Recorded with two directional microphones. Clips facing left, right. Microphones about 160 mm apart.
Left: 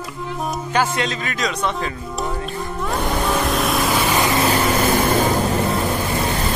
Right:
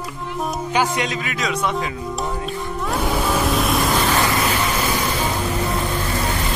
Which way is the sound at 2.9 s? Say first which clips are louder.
Even; 5° right (ahead or behind).